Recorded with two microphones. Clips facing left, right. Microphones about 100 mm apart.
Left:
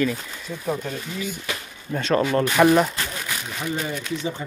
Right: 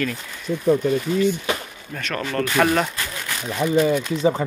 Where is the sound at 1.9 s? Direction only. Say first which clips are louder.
Left 7 dB; 25° left (ahead or behind).